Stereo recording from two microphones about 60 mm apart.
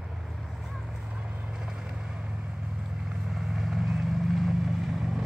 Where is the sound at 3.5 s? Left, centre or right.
Centre.